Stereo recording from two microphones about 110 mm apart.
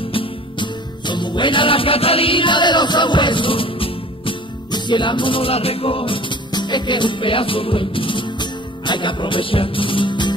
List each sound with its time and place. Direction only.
0.1 s music: 50° left (ahead or behind)